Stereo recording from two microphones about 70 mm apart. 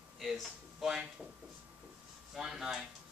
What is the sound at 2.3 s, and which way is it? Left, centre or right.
Speech, centre.